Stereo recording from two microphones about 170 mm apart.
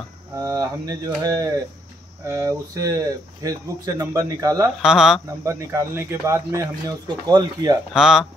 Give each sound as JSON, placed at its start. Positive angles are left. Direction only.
{"t": 0.4, "sound": "speech", "side_deg": -20}
{"t": 4.8, "sound": "speech", "side_deg": -5}
{"t": 5.4, "sound": "speech", "side_deg": -15}
{"t": 7.9, "sound": "speech", "side_deg": -5}